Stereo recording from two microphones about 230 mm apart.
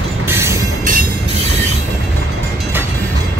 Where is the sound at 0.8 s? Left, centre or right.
Right.